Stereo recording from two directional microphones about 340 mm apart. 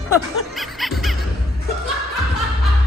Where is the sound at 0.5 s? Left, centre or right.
Centre.